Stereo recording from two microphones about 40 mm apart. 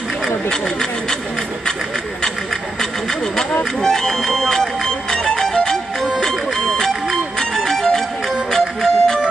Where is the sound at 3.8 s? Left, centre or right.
Centre.